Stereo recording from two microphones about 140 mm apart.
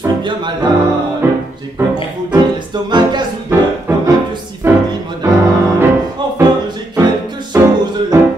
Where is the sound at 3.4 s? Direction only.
15° right (ahead or behind).